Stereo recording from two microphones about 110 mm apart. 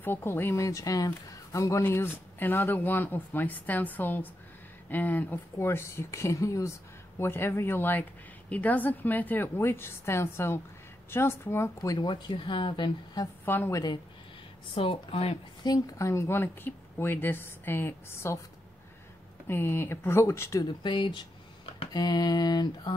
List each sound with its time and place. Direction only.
0.0 s speech: 20° left (ahead or behind)
1.9 s speech: 20° left (ahead or behind)
12.0 s speech: 45° left (ahead or behind)
13.5 s speech: 20° left (ahead or behind)
14.8 s speech: 55° left (ahead or behind)
15.6 s speech: 35° left (ahead or behind)
19.4 s speech: 20° left (ahead or behind)
20.8 s speech: 45° left (ahead or behind)
21.9 s mantra: 40° left (ahead or behind)